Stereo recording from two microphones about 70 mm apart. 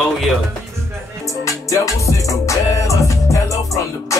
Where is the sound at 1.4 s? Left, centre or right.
Left.